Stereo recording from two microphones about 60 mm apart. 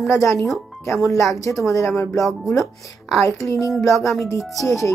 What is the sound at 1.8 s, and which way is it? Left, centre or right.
Speech, left.